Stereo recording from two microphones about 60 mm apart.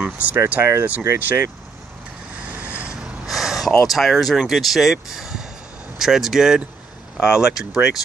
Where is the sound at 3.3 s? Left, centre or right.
Centre.